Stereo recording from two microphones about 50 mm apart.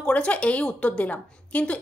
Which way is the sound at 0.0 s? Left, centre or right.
Left.